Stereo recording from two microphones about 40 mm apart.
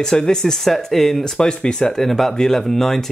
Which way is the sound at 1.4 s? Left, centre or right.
Left.